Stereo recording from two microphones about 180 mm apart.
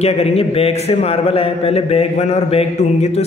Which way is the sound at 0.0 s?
35° left (ahead or behind).